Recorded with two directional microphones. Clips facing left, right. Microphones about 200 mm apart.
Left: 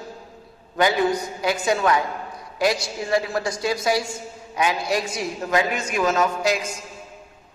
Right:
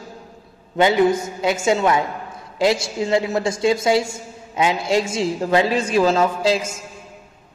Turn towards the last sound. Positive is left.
turn(degrees=-30)  # may be behind; listen again after turning